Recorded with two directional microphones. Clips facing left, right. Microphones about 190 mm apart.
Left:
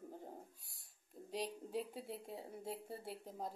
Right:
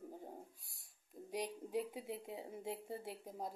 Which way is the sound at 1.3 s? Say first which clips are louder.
Right 2 dB; 15° right (ahead or behind).